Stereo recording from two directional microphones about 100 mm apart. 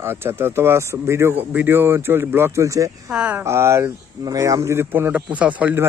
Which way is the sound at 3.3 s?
25° right (ahead or behind).